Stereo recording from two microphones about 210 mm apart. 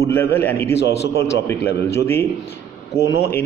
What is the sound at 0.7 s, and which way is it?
Speech, 55° left (ahead or behind).